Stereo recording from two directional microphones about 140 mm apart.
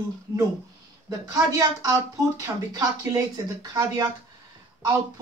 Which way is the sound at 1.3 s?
25° right (ahead or behind).